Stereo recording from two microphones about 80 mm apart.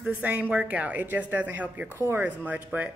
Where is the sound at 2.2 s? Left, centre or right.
Centre.